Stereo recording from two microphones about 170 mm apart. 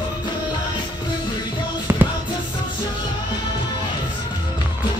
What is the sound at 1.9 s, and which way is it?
Music, 15° right (ahead or behind).